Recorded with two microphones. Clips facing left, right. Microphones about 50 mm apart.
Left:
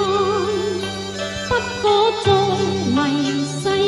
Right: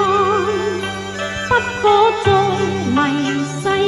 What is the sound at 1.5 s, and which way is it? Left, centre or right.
Music, right.